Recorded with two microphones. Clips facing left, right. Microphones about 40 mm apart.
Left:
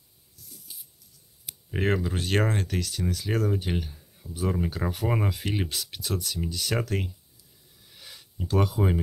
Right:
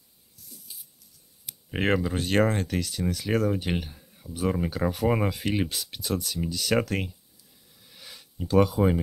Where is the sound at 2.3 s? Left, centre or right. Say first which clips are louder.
Right 3 dB; right.